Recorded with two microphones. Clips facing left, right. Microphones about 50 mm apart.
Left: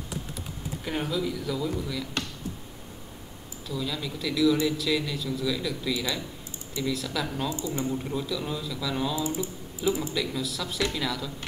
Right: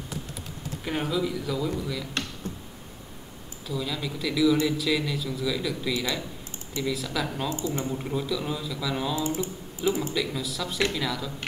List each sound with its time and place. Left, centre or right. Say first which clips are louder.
0.8 s a man's voice: right 2 dB; centre
3.6 s a man's voice: right 1 dB; centre
9.2 s speech: right 1 dB; right
9.8 s a man's voice: right 1 dB; centre